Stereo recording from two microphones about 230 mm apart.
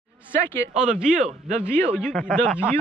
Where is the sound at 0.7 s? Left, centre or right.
Centre.